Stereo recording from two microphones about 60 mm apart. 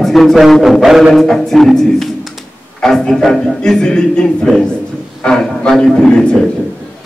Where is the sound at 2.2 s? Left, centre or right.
Centre.